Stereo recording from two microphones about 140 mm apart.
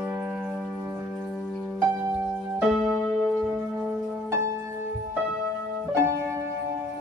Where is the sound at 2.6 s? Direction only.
Centre (ahead or behind).